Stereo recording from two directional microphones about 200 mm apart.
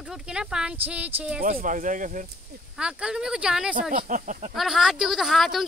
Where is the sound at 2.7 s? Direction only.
5° right (ahead or behind).